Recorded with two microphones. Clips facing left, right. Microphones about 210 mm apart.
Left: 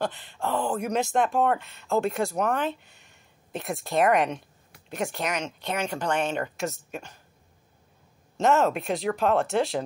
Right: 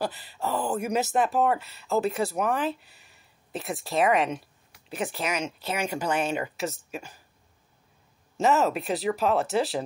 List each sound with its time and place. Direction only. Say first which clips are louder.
0.0 s speech: left 1 dB; 5° right (ahead or behind)
8.4 s speech: left 1 dB; 5° right (ahead or behind)